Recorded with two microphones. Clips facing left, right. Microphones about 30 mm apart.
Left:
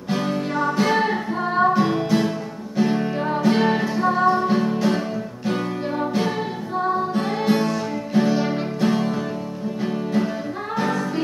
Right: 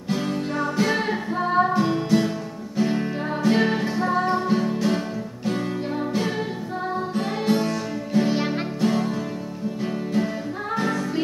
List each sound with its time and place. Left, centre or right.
0.1 s music: centre
10.7 s music: centre